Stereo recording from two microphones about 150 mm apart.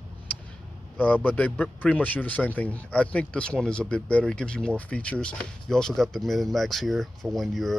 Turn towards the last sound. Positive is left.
turn(degrees=0)  # may be behind; listen again after turning